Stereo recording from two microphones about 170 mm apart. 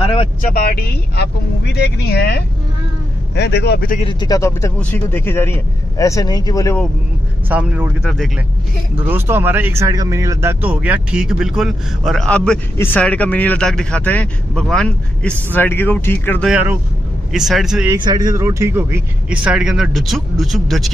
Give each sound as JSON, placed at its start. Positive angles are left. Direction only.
{"t": 0.0, "sound": "vehicle", "side_deg": 30}
{"t": 0.4, "sound": "speech", "side_deg": 60}
{"t": 1.7, "sound": "speech", "side_deg": 75}
{"t": 4.0, "sound": "speech", "side_deg": 25}
{"t": 7.4, "sound": "speech", "side_deg": -10}
{"t": 16.4, "sound": "speech", "side_deg": -10}
{"t": 17.9, "sound": "speech", "side_deg": -25}